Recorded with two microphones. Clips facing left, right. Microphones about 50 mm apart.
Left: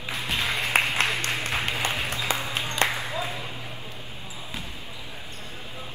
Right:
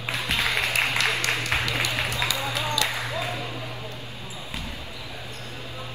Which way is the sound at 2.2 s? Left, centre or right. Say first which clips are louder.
Right 1 dB; left.